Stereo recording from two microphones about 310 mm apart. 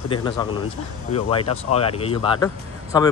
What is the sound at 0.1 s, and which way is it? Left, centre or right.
Speech, centre.